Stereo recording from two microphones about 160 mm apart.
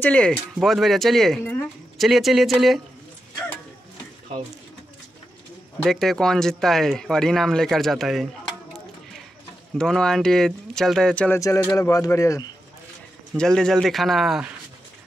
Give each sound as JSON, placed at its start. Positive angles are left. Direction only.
{"t": 0.0, "sound": "speech", "side_deg": 5}
{"t": 5.8, "sound": "speech", "side_deg": 0}
{"t": 9.8, "sound": "speech", "side_deg": 5}
{"t": 11.3, "sound": "speech", "side_deg": 20}
{"t": 13.3, "sound": "speech", "side_deg": 5}